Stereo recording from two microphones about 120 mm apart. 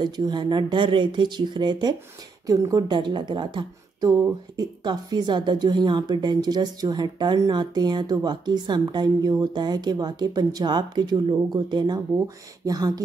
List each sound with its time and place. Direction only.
0.0 s a woman's voice: 35° right (ahead or behind)